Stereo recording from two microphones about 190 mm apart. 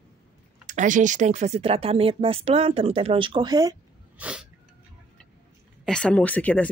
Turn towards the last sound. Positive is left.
turn(degrees=10)  # may be behind; listen again after turning